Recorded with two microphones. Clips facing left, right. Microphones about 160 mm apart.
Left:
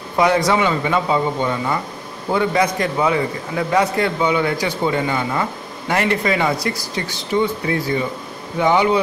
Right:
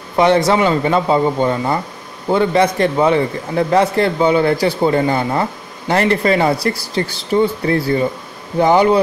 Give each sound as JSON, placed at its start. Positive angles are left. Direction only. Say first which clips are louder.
{"t": 0.2, "sound": "a man's voice", "louder": "right 3 dB", "side_deg": -25}